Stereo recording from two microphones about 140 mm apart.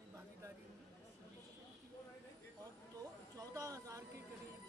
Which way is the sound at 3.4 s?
25° right (ahead or behind).